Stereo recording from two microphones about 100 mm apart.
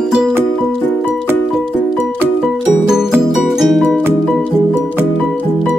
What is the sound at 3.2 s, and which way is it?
Music, 5° right (ahead or behind).